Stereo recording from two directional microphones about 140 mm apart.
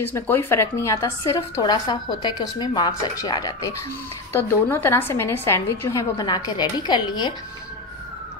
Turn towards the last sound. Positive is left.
turn(degrees=30)  # may be behind; listen again after turning